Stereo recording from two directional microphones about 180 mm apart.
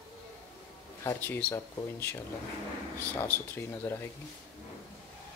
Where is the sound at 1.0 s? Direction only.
15° left (ahead or behind).